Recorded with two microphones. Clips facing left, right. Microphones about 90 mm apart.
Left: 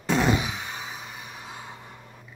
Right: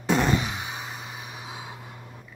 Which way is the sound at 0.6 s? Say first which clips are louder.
Right 1 dB; 5° right (ahead or behind).